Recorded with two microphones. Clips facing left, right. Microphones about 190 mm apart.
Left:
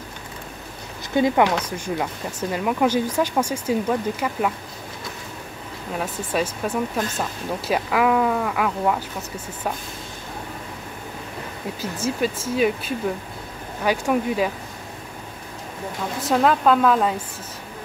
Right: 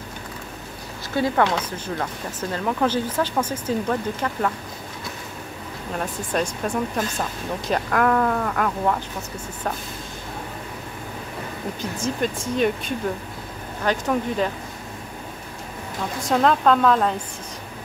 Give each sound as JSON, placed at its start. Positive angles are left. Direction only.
{"t": 1.1, "sound": "speech", "side_deg": 15}
{"t": 5.9, "sound": "speech", "side_deg": 5}
{"t": 11.8, "sound": "speech", "side_deg": 5}
{"t": 16.2, "sound": "speech", "side_deg": 5}